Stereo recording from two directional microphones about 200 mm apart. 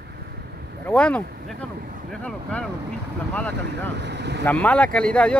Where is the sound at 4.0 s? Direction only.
60° right (ahead or behind).